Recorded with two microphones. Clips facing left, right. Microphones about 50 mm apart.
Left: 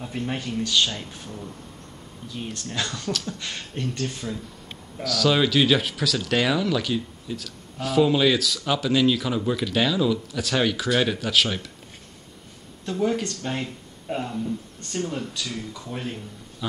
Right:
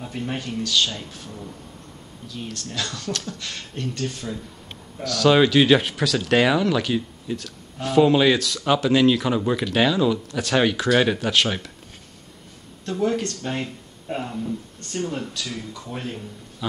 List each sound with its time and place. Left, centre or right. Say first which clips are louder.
0.0 s speech: even; centre
2.2 s speech: even; centre
12.8 s speech: right 1 dB; centre